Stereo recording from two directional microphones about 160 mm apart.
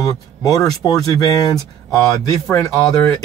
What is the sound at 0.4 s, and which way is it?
Speech, 20° left (ahead or behind).